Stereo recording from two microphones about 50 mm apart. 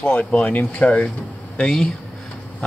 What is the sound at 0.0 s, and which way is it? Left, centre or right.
Speech, left.